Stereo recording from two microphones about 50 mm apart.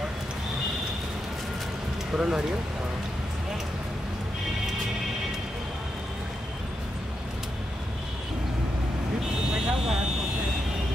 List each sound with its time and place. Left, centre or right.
2.1 s speech: centre
9.5 s vehicle: centre